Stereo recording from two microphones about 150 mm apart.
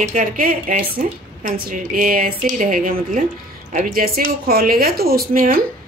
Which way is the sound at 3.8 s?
80° right.